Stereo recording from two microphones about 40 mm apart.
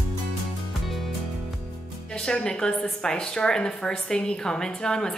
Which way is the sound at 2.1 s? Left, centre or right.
Left.